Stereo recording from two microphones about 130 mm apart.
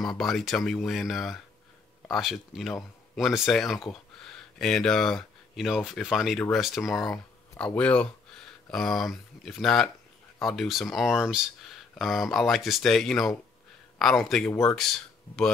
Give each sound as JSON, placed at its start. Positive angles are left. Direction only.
{"t": 0.0, "sound": "speech", "side_deg": 5}
{"t": 14.5, "sound": "speech", "side_deg": 25}
{"t": 14.8, "sound": "speech", "side_deg": 5}